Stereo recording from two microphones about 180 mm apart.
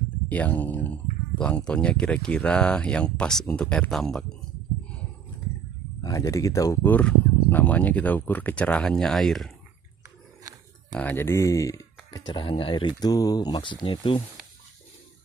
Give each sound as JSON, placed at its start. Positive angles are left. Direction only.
{"t": 0.3, "sound": "speech", "side_deg": 10}
{"t": 6.0, "sound": "speech", "side_deg": 20}
{"t": 10.9, "sound": "speech", "side_deg": 10}